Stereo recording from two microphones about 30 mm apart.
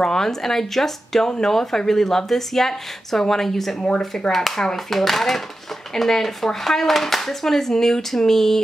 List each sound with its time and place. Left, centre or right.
0.0 s speech: centre
4.6 s speech: centre
4.9 s speech: centre